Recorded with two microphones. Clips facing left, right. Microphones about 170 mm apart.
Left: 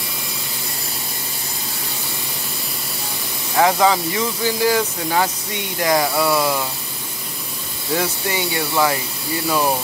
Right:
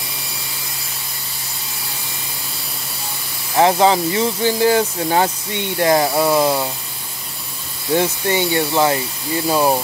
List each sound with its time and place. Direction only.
3.5 s speech: 25° right (ahead or behind)
7.9 s speech: 30° right (ahead or behind)